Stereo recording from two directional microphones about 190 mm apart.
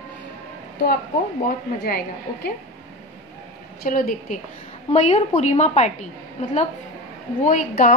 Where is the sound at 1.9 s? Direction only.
55° left (ahead or behind).